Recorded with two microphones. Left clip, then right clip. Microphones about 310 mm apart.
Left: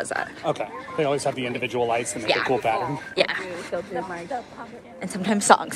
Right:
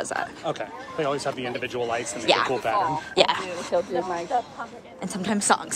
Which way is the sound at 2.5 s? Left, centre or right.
Left.